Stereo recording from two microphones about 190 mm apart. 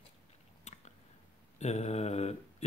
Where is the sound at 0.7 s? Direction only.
35° left (ahead or behind).